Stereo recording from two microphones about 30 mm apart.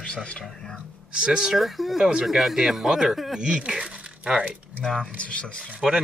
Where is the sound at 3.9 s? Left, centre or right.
Right.